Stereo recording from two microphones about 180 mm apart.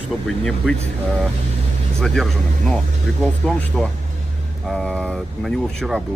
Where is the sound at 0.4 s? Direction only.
5° left (ahead or behind).